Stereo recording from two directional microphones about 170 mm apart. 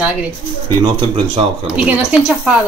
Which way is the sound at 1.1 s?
35° right (ahead or behind).